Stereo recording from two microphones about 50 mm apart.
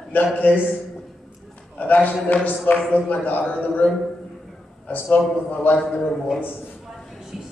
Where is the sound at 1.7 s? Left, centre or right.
Left.